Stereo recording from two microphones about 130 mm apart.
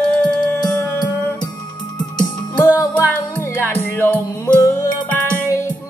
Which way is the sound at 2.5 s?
25° left (ahead or behind).